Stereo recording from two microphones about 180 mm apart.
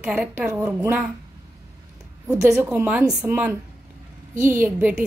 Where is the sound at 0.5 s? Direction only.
20° right (ahead or behind).